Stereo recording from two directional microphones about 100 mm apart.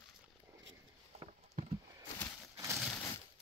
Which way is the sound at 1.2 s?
90° right.